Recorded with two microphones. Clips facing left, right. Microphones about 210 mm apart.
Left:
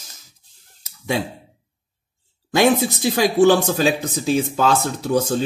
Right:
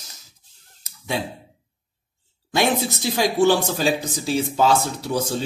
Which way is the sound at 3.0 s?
50° left (ahead or behind).